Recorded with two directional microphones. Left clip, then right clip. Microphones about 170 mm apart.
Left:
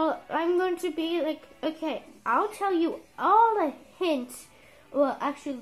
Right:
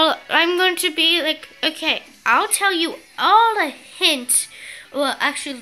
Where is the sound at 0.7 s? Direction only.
20° right (ahead or behind).